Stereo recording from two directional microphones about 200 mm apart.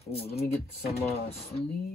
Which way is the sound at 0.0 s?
30° left (ahead or behind).